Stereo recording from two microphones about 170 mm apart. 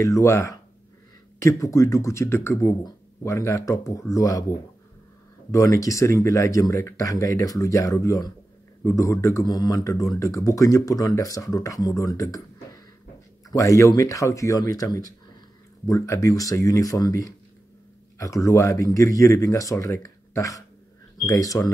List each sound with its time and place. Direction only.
0.0 s speech: 20° left (ahead or behind)
5.5 s speech: 20° left (ahead or behind)